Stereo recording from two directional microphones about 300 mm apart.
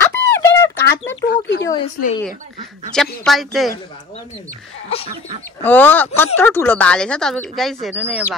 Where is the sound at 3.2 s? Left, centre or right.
Centre.